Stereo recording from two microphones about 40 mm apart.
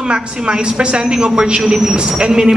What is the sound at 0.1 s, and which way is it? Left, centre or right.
A woman's voice, right.